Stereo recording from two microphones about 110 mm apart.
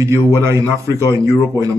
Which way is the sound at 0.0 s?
25° right (ahead or behind).